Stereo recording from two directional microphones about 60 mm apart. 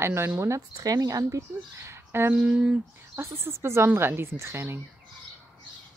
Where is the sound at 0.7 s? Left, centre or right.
Right.